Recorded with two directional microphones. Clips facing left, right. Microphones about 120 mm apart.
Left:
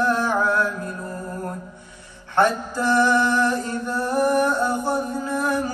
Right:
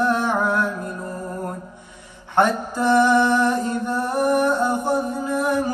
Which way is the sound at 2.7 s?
20° right (ahead or behind).